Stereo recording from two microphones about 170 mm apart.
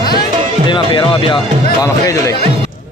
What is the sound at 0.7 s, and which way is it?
Speech, 30° left (ahead or behind).